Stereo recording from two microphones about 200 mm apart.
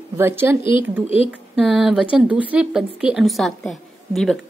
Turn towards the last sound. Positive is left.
turn(degrees=0)  # may be behind; listen again after turning